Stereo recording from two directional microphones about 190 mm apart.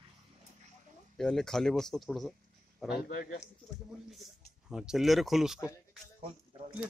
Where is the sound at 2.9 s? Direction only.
50° left (ahead or behind).